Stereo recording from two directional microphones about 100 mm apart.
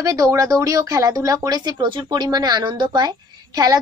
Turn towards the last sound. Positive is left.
turn(degrees=-40)  # may be behind; listen again after turning